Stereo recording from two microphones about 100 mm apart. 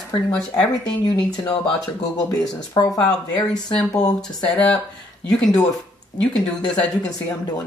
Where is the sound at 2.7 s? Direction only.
40° left (ahead or behind).